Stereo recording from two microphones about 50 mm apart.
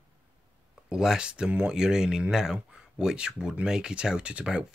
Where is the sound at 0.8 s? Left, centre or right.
Centre.